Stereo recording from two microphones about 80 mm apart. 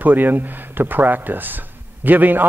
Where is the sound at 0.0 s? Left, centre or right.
Right.